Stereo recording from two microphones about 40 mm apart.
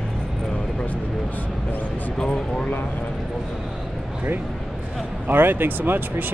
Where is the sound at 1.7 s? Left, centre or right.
Left.